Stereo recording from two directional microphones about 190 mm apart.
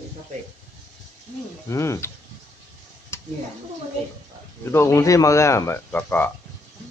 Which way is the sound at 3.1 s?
15° left (ahead or behind).